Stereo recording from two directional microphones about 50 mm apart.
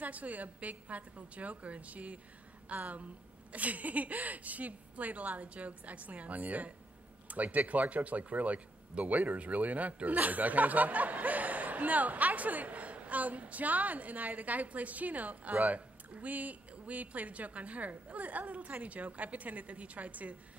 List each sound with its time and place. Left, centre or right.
0.0 s a woman's voice: right